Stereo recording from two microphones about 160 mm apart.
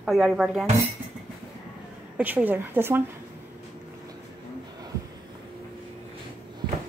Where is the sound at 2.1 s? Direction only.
10° right (ahead or behind).